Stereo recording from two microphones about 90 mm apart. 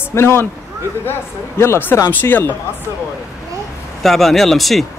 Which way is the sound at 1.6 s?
25° left (ahead or behind).